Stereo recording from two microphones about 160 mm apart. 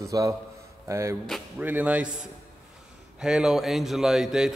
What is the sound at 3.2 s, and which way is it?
A man's voice, 5° right (ahead or behind).